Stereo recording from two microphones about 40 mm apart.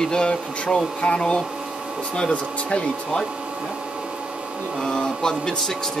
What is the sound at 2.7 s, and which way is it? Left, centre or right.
Speech, centre.